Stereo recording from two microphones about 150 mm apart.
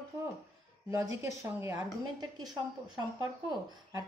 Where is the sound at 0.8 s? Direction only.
20° right (ahead or behind).